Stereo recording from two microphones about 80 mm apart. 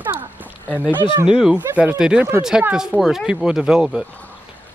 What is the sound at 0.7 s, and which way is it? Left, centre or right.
Speech, left.